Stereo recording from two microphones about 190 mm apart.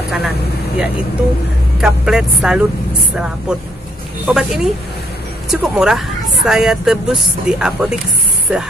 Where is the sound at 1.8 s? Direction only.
5° right (ahead or behind).